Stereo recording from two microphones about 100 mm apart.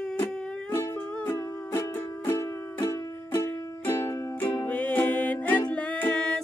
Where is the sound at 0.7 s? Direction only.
25° left (ahead or behind); by 6.4 s 10° left (ahead or behind).